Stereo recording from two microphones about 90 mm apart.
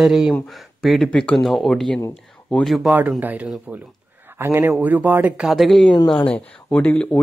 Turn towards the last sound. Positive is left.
turn(degrees=20)  # may be behind; listen again after turning